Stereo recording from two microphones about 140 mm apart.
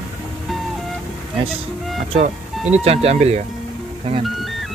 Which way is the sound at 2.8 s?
45° right (ahead or behind).